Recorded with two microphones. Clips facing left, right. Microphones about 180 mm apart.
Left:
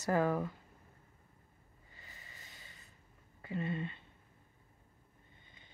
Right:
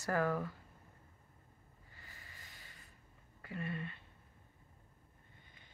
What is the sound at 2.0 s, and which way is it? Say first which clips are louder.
Snort: left 1 dB; 20° left (ahead or behind).